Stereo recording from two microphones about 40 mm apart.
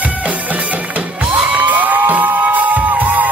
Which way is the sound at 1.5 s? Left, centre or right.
Right.